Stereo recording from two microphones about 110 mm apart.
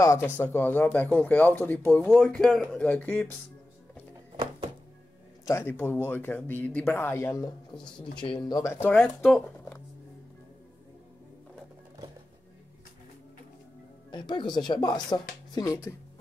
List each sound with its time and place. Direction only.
0.0 s speech: 25° left (ahead or behind)
2.0 s speech: centre (ahead or behind); by 3.3 s 15° left (ahead or behind)
5.4 s speech: 25° left (ahead or behind)
8.2 s speech: 55° left (ahead or behind)
8.6 s speech: 20° left (ahead or behind)
8.9 s speech: centre (ahead or behind)
14.1 s speech: 45° left (ahead or behind); by 15.9 s 30° left (ahead or behind)